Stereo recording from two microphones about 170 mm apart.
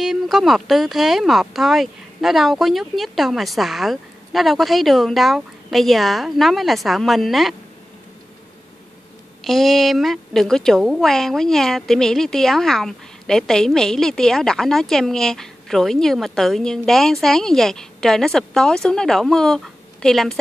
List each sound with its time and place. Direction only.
0.0 s a woman's voice: centre (ahead or behind)
9.4 s a woman's voice: centre (ahead or behind)